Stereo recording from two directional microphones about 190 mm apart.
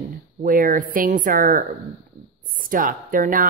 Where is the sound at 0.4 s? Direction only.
45° right (ahead or behind).